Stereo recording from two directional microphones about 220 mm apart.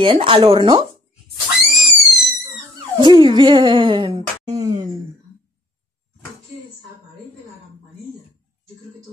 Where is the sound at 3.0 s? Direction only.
20° right (ahead or behind).